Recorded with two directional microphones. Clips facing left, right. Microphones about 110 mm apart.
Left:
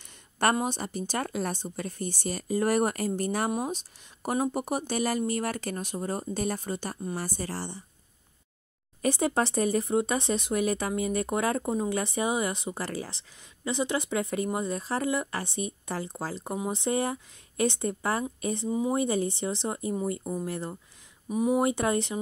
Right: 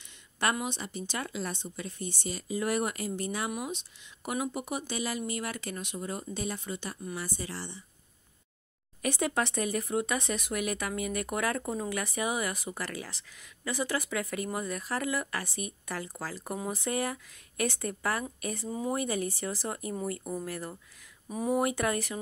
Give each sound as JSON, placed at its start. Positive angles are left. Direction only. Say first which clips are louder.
{"t": 0.0, "sound": "speech", "louder": "left 5 dB", "side_deg": 40}
{"t": 9.0, "sound": "speech", "louder": "left 4 dB", "side_deg": 30}
{"t": 21.3, "sound": "speech", "louder": "left 4 dB", "side_deg": 15}
{"t": 21.6, "sound": "speech", "louder": "left 4 dB", "side_deg": 25}